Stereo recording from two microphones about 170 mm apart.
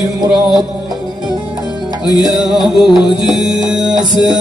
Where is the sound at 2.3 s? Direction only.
Centre (ahead or behind).